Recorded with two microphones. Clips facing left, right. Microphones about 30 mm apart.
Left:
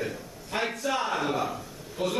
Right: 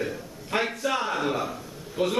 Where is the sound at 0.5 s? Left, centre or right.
Right.